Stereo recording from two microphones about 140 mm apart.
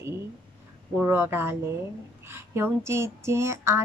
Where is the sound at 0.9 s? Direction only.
15° right (ahead or behind).